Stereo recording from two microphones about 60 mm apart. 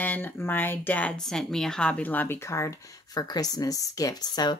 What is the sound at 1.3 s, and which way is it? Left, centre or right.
Speech, centre.